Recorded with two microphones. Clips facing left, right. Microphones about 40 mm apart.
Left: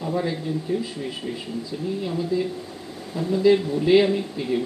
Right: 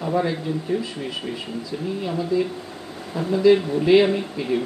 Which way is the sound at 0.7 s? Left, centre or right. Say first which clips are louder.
Right 1 dB; right.